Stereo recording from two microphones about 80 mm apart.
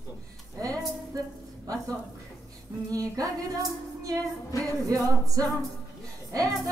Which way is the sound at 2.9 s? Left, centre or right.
Right.